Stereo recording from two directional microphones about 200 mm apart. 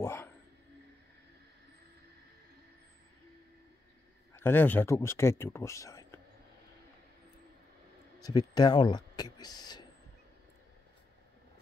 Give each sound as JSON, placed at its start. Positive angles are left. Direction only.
{"t": 0.0, "sound": "speech", "side_deg": 10}
{"t": 4.3, "sound": "speech", "side_deg": 10}
{"t": 8.2, "sound": "speech", "side_deg": 20}